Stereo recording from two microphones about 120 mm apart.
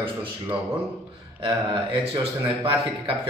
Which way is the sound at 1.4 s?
40° right (ahead or behind).